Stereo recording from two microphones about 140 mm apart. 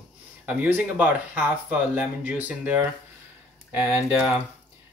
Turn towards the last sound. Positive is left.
turn(degrees=-10)  # may be behind; listen again after turning